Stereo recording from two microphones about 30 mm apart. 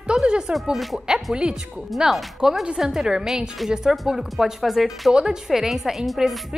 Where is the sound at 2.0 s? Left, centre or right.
Right.